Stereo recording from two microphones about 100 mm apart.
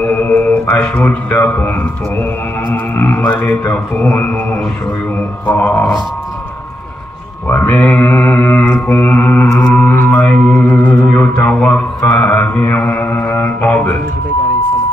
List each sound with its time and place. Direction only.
0.0 s speech: 15° left (ahead or behind)
2.7 s music: 20° left (ahead or behind)
7.4 s mantra: 20° left (ahead or behind)
8.8 s music: 20° left (ahead or behind)
11.4 s mantra: 15° left (ahead or behind)